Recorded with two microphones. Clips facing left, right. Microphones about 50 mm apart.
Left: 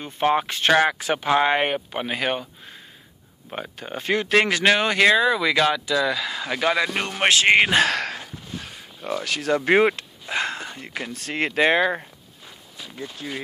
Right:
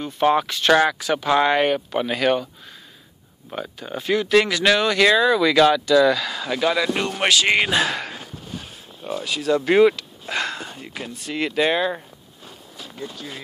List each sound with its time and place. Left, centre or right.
0.0 s speech: left
3.5 s speech: left; by 6.5 s centre
6.5 s speech: left
7.8 s speech: left
9.7 s speech: left
10.4 s a sound: left
10.7 s speech: left
13.2 s speech: left